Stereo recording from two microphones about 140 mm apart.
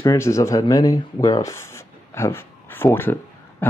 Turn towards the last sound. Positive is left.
turn(degrees=15)  # may be behind; listen again after turning